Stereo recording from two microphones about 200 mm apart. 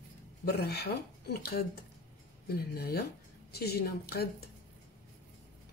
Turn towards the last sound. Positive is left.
turn(degrees=50)  # may be behind; listen again after turning